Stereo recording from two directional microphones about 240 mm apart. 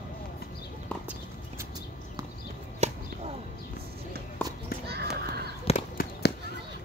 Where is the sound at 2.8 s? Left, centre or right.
Right.